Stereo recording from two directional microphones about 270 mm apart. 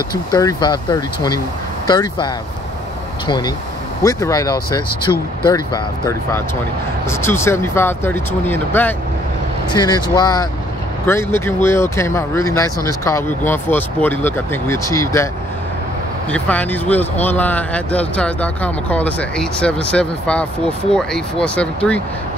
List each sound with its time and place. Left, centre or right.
0.1 s speech: centre
16.3 s speech: centre